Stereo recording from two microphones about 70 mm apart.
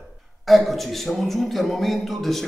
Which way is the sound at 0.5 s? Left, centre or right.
Centre.